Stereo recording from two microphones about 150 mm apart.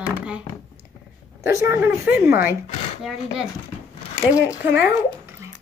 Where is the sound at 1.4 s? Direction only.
20° right (ahead or behind).